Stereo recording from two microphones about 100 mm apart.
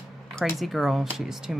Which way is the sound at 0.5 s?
Centre (ahead or behind).